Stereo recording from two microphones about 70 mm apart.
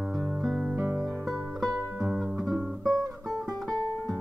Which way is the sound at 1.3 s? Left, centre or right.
Centre.